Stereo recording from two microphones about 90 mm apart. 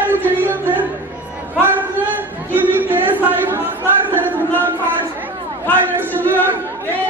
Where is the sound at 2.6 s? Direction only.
20° right (ahead or behind).